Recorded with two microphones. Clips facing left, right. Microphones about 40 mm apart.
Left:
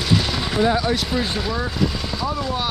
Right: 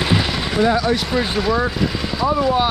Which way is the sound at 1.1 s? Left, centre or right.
Centre.